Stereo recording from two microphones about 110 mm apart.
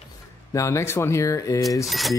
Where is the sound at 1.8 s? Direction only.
Centre (ahead or behind).